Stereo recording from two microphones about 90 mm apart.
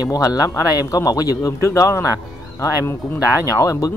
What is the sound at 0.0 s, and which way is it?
Speech, 45° left (ahead or behind).